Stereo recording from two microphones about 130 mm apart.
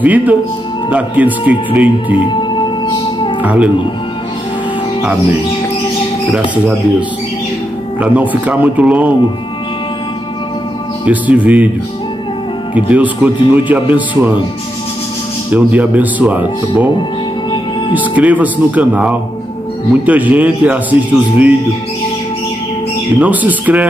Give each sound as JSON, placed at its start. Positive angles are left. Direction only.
{"t": 0.0, "sound": "speech", "side_deg": -10}
{"t": 2.1, "sound": "speech", "side_deg": 40}
{"t": 3.4, "sound": "speech", "side_deg": -10}
{"t": 6.5, "sound": "speech", "side_deg": -10}
{"t": 11.1, "sound": "speech", "side_deg": -10}
{"t": 12.7, "sound": "speech", "side_deg": -10}
{"t": 15.5, "sound": "speech", "side_deg": -10}
{"t": 17.9, "sound": "speech", "side_deg": -10}
{"t": 23.1, "sound": "speech", "side_deg": -10}